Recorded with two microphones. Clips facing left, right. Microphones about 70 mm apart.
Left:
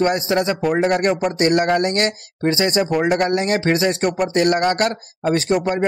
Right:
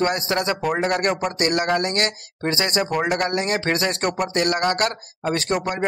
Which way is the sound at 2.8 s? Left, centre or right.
Centre.